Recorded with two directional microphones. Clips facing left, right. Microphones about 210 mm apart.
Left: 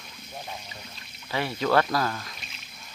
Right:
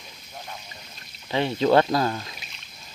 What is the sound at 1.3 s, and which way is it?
Speech, 25° right (ahead or behind).